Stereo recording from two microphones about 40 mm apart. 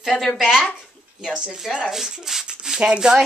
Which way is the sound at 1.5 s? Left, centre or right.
Centre.